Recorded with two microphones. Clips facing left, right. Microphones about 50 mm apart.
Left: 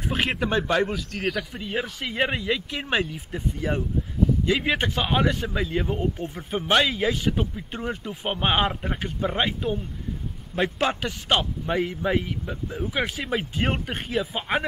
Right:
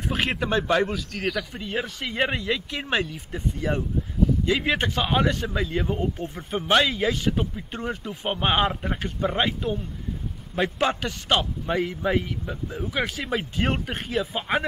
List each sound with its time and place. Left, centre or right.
0.1 s a man's voice: centre